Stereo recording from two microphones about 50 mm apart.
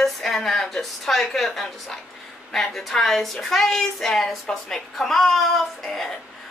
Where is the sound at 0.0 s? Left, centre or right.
Centre.